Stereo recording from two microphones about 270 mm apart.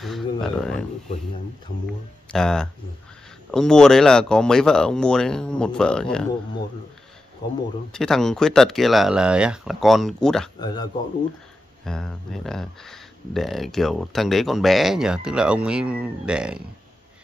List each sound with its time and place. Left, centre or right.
0.0 s speech: centre
2.3 s speech: centre
7.9 s speech: centre
10.6 s speech: centre
11.8 s speech: centre